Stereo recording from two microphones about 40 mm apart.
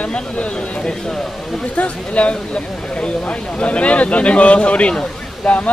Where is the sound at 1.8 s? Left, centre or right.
Left.